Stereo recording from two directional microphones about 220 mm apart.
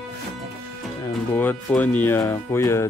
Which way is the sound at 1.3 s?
10° left (ahead or behind).